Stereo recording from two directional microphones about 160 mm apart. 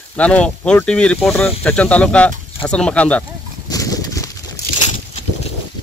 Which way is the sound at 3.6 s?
20° left (ahead or behind).